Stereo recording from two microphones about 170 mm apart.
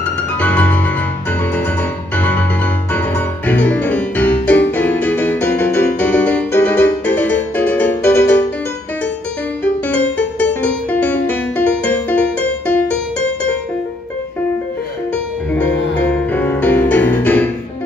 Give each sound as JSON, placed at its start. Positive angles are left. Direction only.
{"t": 0.4, "sound": "music", "side_deg": 10}
{"t": 9.8, "sound": "music", "side_deg": 10}
{"t": 16.0, "sound": "music", "side_deg": 10}